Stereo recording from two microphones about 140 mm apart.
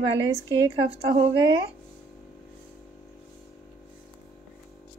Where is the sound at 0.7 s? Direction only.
45° right (ahead or behind).